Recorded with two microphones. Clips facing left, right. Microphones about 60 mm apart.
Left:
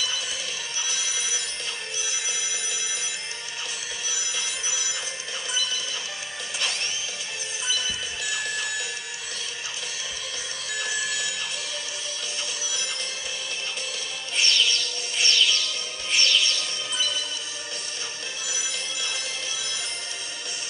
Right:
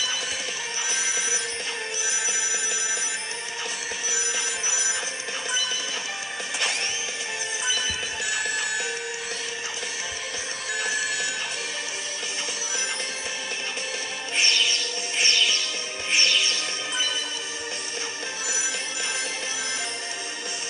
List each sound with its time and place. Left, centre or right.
0.8 s telephone bell ringing: right
4.1 s telephone bell ringing: right
10.8 s telephone bell ringing: right
14.3 s music: right